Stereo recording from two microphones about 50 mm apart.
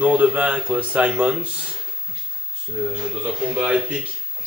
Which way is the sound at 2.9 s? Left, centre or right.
Centre.